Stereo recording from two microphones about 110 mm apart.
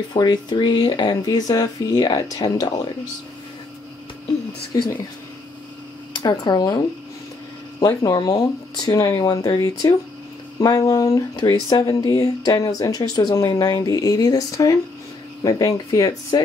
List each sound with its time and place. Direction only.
0.1 s speech: 40° left (ahead or behind)
4.7 s speech: 30° left (ahead or behind)
6.2 s speech: 35° left (ahead or behind)
7.8 s speech: 40° left (ahead or behind)